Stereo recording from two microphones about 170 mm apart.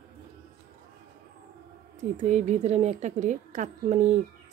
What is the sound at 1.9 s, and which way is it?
A woman's voice, 45° right (ahead or behind).